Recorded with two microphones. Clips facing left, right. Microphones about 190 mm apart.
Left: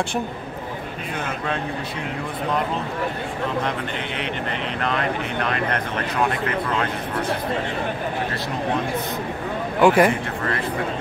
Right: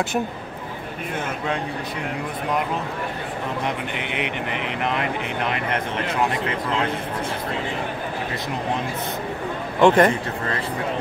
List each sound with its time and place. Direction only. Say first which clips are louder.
3.6 s speech: even; 15° right (ahead or behind)
9.8 s a man's voice: even; 10° left (ahead or behind)